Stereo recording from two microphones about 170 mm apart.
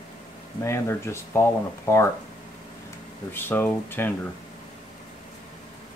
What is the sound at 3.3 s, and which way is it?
Speech, 10° left (ahead or behind).